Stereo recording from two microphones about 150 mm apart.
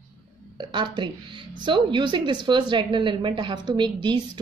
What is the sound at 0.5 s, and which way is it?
A woman's voice, 30° right (ahead or behind).